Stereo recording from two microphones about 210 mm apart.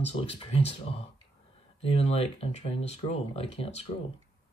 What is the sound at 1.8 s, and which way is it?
Speech, 30° left (ahead or behind).